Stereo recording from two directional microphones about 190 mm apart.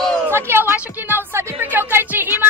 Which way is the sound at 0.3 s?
10° right (ahead or behind).